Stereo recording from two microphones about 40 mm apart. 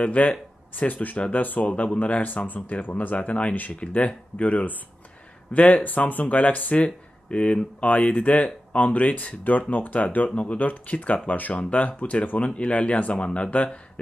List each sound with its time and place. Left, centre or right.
0.0 s speech: left
7.2 s speech: left